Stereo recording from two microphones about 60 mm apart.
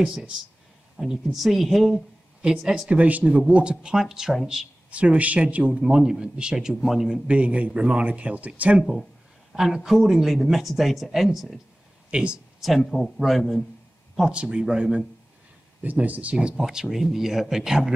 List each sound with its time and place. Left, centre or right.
0.0 s speech: centre
2.4 s speech: centre
2.9 s speech: right; by 4.4 s centre
4.9 s speech: right; by 7.2 s centre
7.2 s a man's voice: right
9.5 s speech: centre
12.1 s speech: centre
12.6 s speech: centre
14.3 s speech: centre
15.8 s speech: right; by 17.9 s centre